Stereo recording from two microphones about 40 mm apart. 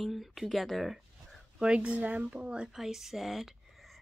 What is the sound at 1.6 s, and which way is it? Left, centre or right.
Speech, right.